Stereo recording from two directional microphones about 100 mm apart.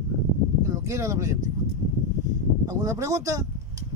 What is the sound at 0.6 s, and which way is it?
Speech, 30° right (ahead or behind).